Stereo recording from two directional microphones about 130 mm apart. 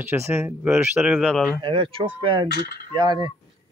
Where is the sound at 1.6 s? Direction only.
40° right (ahead or behind).